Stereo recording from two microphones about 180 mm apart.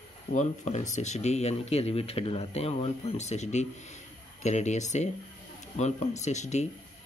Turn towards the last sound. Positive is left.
turn(degrees=40)  # may be behind; listen again after turning